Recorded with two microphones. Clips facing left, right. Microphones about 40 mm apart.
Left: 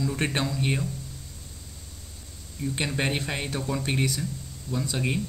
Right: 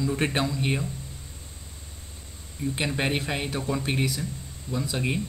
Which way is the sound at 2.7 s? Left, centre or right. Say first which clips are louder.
Right 1 dB; centre.